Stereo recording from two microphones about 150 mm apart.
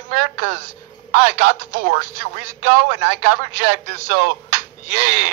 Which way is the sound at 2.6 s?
60° right (ahead or behind).